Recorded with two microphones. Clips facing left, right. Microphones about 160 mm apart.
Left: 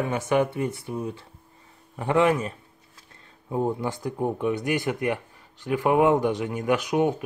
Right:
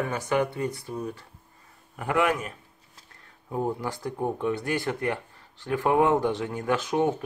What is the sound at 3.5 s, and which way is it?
Speech, 20° left (ahead or behind).